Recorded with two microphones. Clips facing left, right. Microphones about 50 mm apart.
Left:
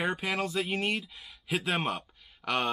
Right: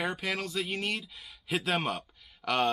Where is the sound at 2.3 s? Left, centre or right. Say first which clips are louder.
Right 1 dB; centre.